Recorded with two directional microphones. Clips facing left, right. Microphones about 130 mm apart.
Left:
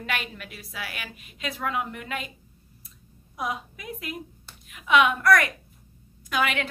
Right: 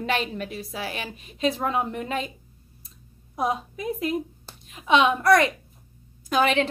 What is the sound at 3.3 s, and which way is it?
A woman's voice, 30° right (ahead or behind).